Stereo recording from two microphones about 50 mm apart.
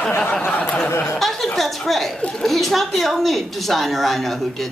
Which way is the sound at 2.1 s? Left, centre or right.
Centre.